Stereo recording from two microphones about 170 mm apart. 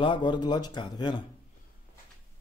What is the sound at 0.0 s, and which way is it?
A man's voice, 30° left (ahead or behind).